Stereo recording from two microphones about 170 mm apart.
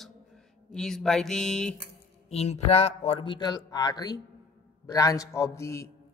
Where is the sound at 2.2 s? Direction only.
40° left (ahead or behind); by 5.9 s 15° left (ahead or behind).